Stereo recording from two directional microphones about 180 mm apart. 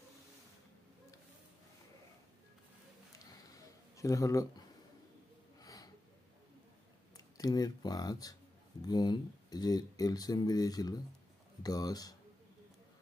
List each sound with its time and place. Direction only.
3.9 s speech: 20° left (ahead or behind)
5.6 s snort: 20° left (ahead or behind)
7.2 s speech: 20° left (ahead or behind)